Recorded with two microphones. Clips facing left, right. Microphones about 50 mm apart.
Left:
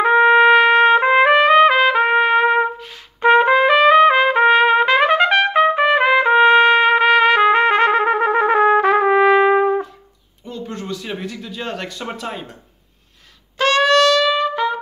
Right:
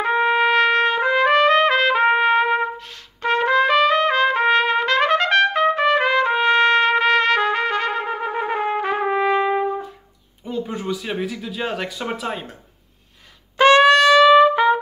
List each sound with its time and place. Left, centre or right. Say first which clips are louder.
0.0 s trumpet: left 6 dB; centre
3.2 s trumpet: left 5 dB; centre; by 8.0 s left
8.0 s trumpet: left 8 dB; left
10.4 s speech: right 3 dB; centre
13.6 s trumpet: right 2 dB; centre